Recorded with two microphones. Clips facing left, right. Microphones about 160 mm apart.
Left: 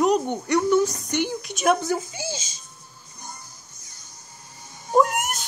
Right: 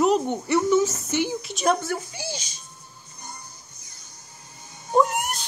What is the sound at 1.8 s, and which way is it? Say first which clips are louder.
Speech: left 3 dB; 20° left (ahead or behind).